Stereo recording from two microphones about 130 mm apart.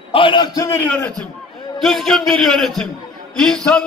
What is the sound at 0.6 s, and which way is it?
Speech, 25° left (ahead or behind).